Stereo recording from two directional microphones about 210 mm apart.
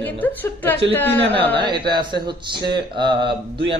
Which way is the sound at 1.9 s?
20° right (ahead or behind).